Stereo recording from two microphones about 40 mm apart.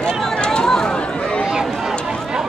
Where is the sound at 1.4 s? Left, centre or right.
Centre.